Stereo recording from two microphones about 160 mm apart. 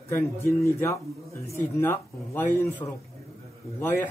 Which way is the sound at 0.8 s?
20° left (ahead or behind).